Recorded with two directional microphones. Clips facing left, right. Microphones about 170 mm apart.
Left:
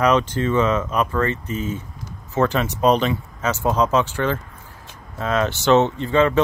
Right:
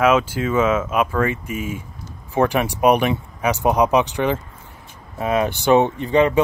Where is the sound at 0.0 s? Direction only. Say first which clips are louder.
Right 1 dB; 5° right (ahead or behind).